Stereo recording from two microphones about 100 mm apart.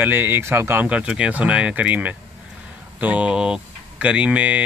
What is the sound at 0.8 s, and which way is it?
Speech, 10° right (ahead or behind).